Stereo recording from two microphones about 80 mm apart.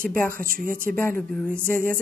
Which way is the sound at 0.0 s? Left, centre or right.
Left.